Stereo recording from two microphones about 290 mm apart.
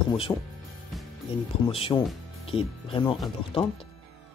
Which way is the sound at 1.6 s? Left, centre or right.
Centre.